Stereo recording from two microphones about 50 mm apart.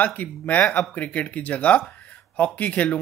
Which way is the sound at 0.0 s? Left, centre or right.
Left.